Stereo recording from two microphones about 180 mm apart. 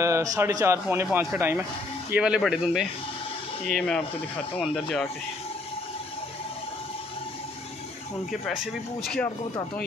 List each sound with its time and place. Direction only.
0.0 s a man's voice: 15° right (ahead or behind); by 5.0 s centre (ahead or behind)
8.3 s speech: centre (ahead or behind)